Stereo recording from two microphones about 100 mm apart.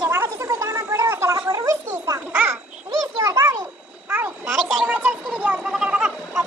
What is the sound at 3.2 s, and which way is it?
Speech, 40° right (ahead or behind).